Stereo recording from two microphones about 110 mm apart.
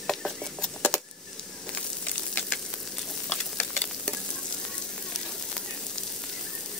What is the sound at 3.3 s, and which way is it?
Stir, 10° left (ahead or behind).